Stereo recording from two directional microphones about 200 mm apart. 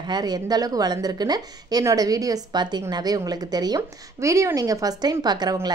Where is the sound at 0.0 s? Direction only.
20° right (ahead or behind).